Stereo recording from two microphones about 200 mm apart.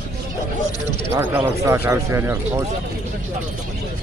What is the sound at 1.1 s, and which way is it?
Speech, 10° right (ahead or behind).